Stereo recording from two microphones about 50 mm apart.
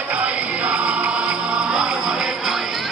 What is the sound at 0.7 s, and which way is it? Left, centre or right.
Music, right.